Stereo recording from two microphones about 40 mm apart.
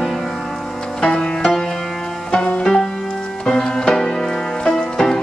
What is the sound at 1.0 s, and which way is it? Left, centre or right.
Music, left.